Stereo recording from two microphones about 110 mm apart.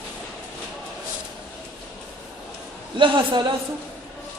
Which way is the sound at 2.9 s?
50° right (ahead or behind).